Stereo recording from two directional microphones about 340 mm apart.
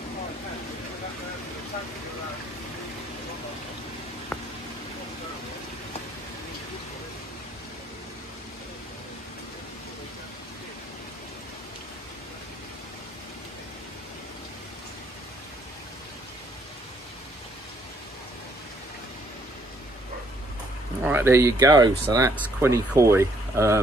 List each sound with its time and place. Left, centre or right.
21.0 s speech: centre